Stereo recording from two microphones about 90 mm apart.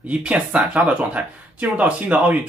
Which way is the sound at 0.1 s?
15° right (ahead or behind).